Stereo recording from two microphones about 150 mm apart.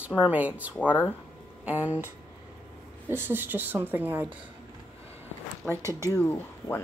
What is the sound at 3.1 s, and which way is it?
Speech, 15° right (ahead or behind).